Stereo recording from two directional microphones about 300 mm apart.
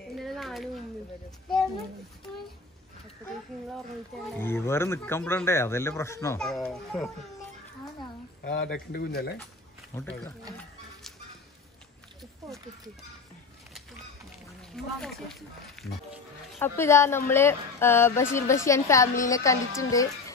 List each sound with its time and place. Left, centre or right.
0.2 s a sound: centre
4.4 s speech: centre
8.5 s speech: left
9.9 s speech: centre
12.4 s a sound: centre
14.6 s speech: centre